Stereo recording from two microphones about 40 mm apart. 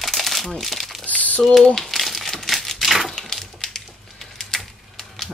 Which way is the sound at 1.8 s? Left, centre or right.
Centre.